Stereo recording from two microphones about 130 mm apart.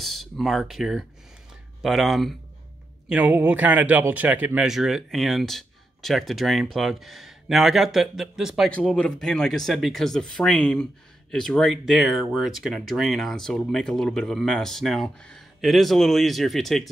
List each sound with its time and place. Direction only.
0.0 s speech: centre (ahead or behind)
3.1 s a man's voice: 10° right (ahead or behind)
4.6 s speech: centre (ahead or behind)